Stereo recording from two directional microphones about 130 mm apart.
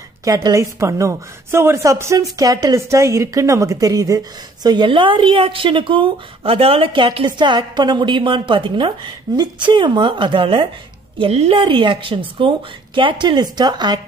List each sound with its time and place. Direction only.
0.2 s a woman's voice: 30° right (ahead or behind)